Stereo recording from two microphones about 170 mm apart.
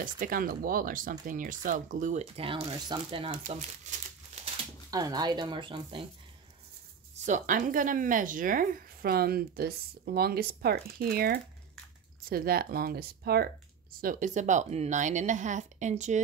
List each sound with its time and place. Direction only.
0.0 s speech: 55° right (ahead or behind); by 3.3 s 30° right (ahead or behind)
4.9 s speech: 20° right (ahead or behind)
7.2 s a woman's voice: 45° right (ahead or behind); by 13.5 s 65° right (ahead or behind)
14.0 s speech: 45° right (ahead or behind)